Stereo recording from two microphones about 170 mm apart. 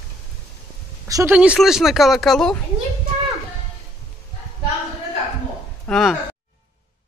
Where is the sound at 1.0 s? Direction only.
20° right (ahead or behind).